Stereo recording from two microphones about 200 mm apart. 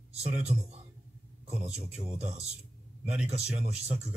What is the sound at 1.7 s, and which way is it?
Speech, 30° right (ahead or behind).